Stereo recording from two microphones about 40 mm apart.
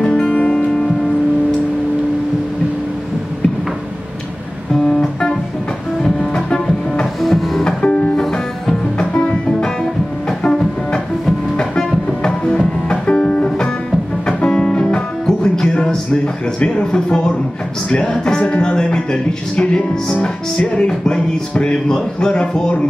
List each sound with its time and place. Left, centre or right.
0.5 s music: centre
6.3 s music: left
7.2 s music: centre
7.6 s music: left
8.2 s music: centre
8.9 s music: left
12.2 s music: centre
16.8 s speech: left